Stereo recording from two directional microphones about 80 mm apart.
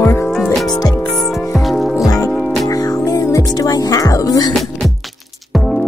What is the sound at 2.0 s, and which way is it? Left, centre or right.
Music, left.